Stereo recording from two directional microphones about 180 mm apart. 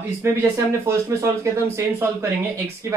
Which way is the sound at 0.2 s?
15° right (ahead or behind).